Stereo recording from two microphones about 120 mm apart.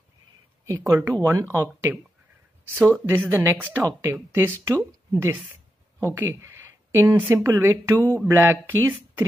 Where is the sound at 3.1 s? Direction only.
20° right (ahead or behind).